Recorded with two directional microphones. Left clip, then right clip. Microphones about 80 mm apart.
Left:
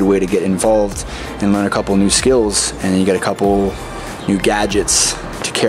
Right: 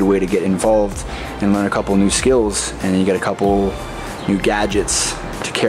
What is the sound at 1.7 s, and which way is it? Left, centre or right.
Speech, left.